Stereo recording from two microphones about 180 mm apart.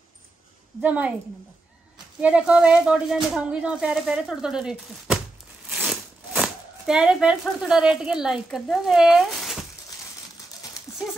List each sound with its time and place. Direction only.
0.8 s a woman's voice: 10° right (ahead or behind)
2.2 s speech: 5° right (ahead or behind)
10.9 s horse: 15° left (ahead or behind)